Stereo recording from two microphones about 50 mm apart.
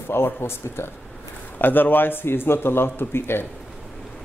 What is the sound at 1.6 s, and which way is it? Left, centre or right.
Speech, left.